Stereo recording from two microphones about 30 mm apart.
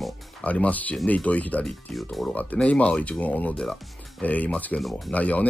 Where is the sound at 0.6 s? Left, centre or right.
Left.